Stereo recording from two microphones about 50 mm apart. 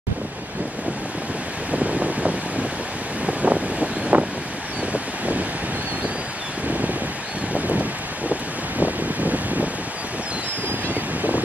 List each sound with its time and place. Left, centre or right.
1.7 s wind: right
3.4 s wind: right
4.1 s vehicle: right
4.9 s a sound: right
7.5 s wind: right